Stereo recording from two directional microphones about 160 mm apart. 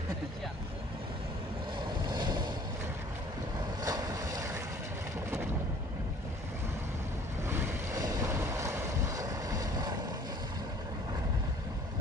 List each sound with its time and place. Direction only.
2.0 s boat: 25° right (ahead or behind)
3.8 s boat: 20° right (ahead or behind)
7.4 s boat: 15° right (ahead or behind)